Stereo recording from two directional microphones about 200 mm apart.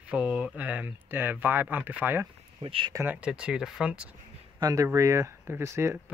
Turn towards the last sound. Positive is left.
turn(degrees=-15)  # may be behind; listen again after turning